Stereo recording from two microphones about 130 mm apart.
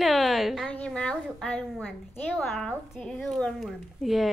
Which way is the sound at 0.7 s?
10° left (ahead or behind).